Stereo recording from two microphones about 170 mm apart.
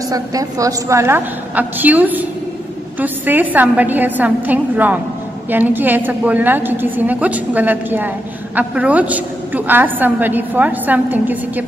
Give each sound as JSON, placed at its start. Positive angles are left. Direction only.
{"t": 0.1, "sound": "a woman's voice", "side_deg": -20}